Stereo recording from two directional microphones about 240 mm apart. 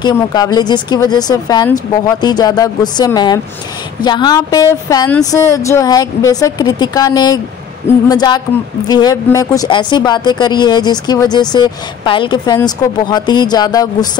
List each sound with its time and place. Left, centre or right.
0.0 s speech: centre